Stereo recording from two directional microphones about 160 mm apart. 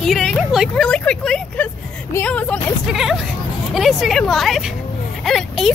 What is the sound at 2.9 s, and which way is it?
Speech, centre (ahead or behind).